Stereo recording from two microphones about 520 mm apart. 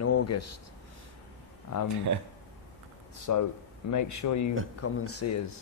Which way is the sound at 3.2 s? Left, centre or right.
Left.